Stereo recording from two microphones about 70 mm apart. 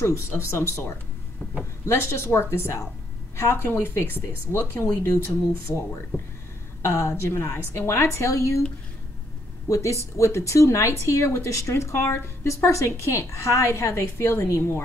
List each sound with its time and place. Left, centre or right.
0.0 s speech: left
6.8 s a woman's voice: left
9.7 s a woman's voice: left